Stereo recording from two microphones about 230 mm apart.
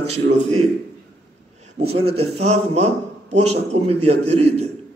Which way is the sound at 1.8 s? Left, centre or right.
Right.